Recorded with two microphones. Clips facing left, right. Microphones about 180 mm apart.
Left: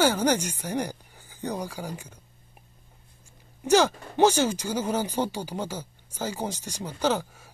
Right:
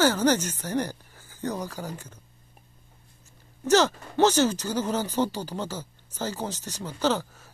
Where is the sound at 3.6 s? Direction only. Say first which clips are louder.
Even; 10° left (ahead or behind).